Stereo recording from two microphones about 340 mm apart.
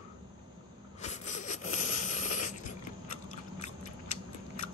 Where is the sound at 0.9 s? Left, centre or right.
Left.